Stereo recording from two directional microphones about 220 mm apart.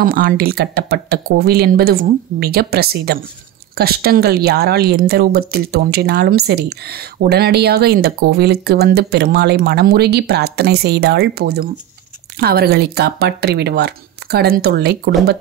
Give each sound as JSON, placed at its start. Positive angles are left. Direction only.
{"t": 0.0, "sound": "speech", "side_deg": -40}